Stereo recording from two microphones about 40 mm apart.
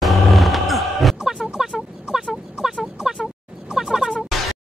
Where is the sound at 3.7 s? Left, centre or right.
Centre.